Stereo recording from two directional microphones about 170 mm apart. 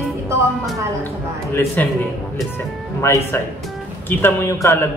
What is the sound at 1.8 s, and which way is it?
Speech, 10° left (ahead or behind).